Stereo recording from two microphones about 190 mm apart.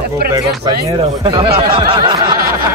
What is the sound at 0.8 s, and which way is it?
Speech, 25° right (ahead or behind).